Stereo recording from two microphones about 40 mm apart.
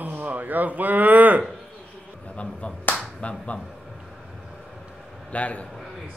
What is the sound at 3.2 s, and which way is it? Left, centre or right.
Speech, left.